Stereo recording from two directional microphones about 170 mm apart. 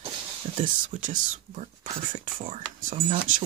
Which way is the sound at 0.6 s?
50° right (ahead or behind).